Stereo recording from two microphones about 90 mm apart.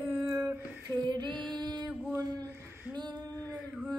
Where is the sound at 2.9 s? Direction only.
55° right (ahead or behind).